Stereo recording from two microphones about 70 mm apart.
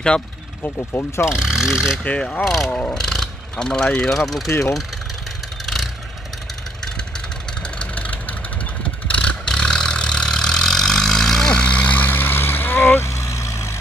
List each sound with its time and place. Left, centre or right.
0.6 s speech: left
1.2 s speech: centre
2.0 s speech: centre
2.4 s speech: centre
2.9 s vehicle: centre
4.2 s speech: centre
4.5 s speech: left
7.6 s vehicle: centre; by 13.7 s left